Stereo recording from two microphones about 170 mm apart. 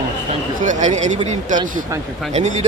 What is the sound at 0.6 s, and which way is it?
A man's voice, 45° right (ahead or behind).